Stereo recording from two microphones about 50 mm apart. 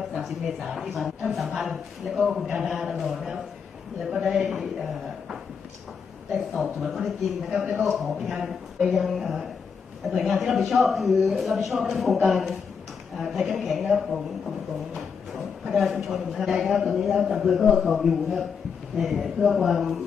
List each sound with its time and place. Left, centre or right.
0.1 s speech: centre
6.5 s speech: centre